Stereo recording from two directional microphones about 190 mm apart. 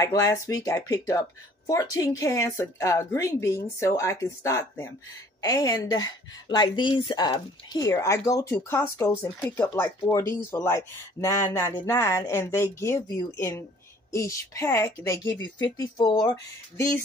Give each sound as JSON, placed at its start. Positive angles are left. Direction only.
{"t": 0.0, "sound": "a woman's voice", "side_deg": 15}